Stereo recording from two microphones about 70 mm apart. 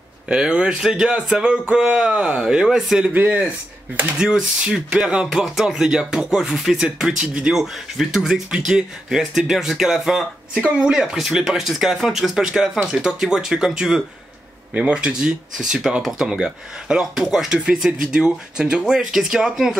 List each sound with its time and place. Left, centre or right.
0.3 s speech: centre
3.1 s speech: right
4.2 s speech: centre